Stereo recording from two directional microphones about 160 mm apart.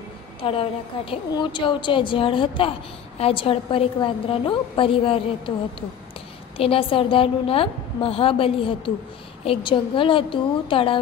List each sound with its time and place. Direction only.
0.4 s a woman's voice: 35° left (ahead or behind)